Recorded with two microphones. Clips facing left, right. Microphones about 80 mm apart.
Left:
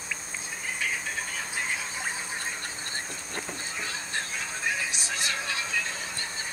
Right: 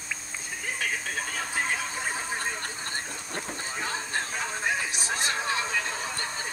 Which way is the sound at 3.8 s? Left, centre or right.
Right.